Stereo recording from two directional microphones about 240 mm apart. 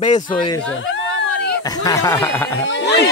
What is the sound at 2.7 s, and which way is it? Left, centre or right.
Speech, left.